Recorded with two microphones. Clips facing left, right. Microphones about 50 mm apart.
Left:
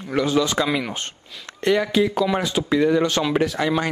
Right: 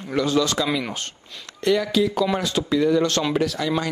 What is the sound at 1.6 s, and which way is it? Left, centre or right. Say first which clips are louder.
A man's voice: left 1 dB; left.